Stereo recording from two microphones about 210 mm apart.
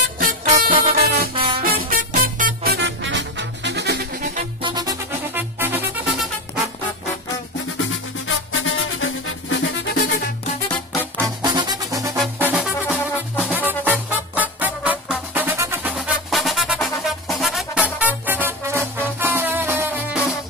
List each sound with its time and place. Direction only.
0.2 s music: 40° right (ahead or behind)
1.3 s music: 25° right (ahead or behind)
1.6 s music: 45° right (ahead or behind)
4.6 s music: 20° right (ahead or behind)
8.3 s music: 70° left (ahead or behind)
11.1 s music: 20° right (ahead or behind)